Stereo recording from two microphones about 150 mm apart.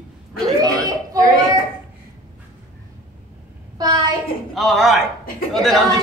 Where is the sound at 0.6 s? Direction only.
25° right (ahead or behind).